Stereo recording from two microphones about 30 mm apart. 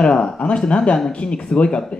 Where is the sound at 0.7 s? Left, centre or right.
Left.